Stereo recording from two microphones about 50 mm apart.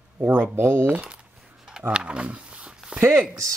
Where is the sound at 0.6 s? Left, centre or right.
Right.